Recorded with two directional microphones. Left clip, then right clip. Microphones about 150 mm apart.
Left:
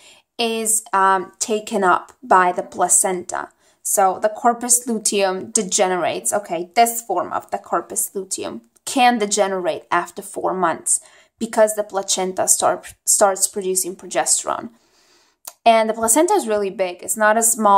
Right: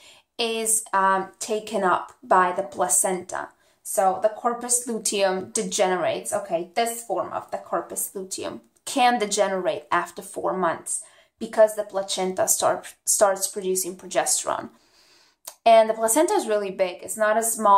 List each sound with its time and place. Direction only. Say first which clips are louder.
0.4 s a woman's voice: left 4 dB; 30° left (ahead or behind)